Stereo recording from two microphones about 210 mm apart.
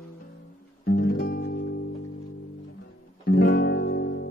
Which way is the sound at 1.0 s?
45° left (ahead or behind).